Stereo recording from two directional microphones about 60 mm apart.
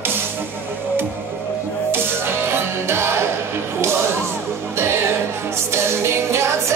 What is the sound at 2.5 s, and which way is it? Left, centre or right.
Music, right.